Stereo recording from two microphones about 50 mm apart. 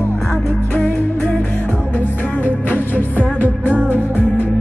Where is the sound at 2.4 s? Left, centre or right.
Left.